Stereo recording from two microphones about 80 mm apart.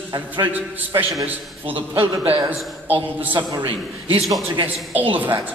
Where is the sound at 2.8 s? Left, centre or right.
Right.